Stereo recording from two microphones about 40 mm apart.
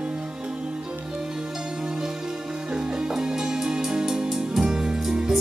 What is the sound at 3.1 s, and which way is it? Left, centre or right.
Music, centre.